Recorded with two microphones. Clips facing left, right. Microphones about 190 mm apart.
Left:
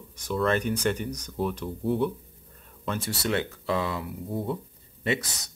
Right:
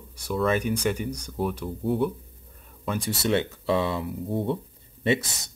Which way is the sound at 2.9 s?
20° right (ahead or behind).